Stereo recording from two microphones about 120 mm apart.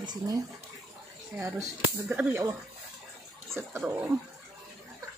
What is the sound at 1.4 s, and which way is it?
Speech, 25° right (ahead or behind).